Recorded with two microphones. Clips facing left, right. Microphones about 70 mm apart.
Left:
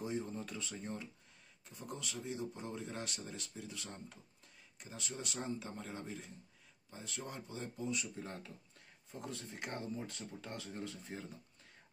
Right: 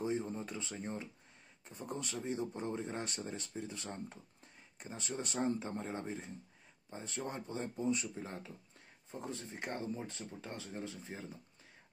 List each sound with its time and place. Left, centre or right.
0.0 s speech: right
8.2 s speech: centre
9.1 s speech: right